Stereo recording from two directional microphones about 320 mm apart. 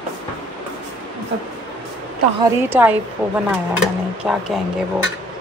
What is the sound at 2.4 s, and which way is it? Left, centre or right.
Speech, centre.